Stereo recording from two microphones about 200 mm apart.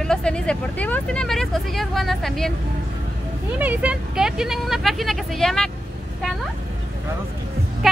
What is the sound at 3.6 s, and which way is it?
Speech, 5° right (ahead or behind).